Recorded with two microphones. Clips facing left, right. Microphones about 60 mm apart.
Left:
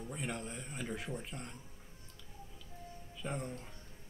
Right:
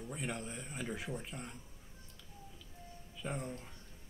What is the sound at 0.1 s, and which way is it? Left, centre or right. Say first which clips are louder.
Speech: even; centre.